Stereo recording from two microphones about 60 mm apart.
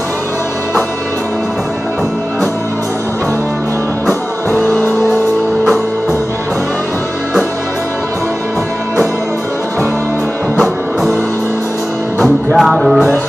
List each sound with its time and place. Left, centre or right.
4.6 s music: left
10.6 s music: centre
12.5 s music: centre